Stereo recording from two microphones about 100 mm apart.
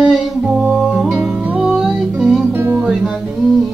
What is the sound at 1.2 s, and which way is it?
Music, 15° right (ahead or behind).